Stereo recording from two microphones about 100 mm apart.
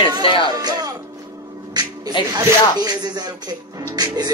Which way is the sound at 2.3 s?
40° right (ahead or behind).